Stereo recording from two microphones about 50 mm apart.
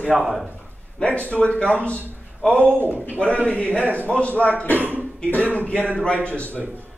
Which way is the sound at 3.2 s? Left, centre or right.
Left.